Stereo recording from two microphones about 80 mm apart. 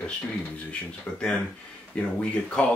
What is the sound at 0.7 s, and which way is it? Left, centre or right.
Speech, centre.